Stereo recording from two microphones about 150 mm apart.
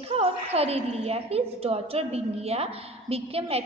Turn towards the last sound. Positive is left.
turn(degrees=-40)  # may be behind; listen again after turning